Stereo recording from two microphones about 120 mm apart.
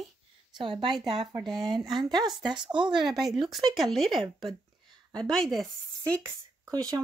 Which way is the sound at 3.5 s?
Centre (ahead or behind).